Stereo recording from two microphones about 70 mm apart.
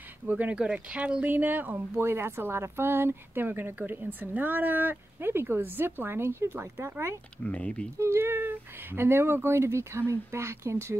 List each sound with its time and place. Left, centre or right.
0.3 s speech: right
7.4 s speech: centre
8.0 s speech: right